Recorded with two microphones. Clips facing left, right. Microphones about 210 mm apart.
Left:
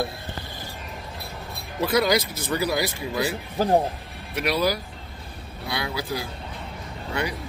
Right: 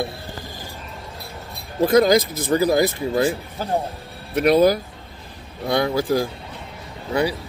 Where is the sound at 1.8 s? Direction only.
45° right (ahead or behind).